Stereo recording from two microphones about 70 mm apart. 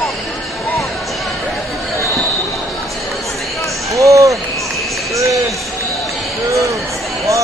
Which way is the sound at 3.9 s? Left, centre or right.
Right.